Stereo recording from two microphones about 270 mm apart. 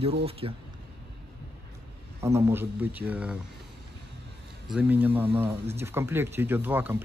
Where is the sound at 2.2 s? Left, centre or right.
Centre.